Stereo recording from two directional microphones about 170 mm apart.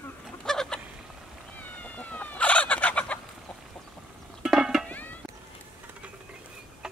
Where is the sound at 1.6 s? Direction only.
10° left (ahead or behind).